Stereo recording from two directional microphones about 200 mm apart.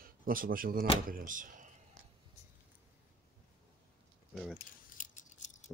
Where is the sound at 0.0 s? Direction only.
45° right (ahead or behind).